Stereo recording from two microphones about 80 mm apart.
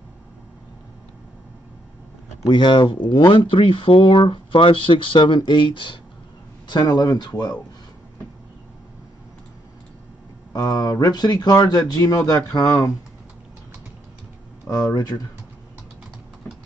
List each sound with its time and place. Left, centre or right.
2.5 s speech: left
6.7 s speech: left
10.5 s speech: left
14.7 s speech: left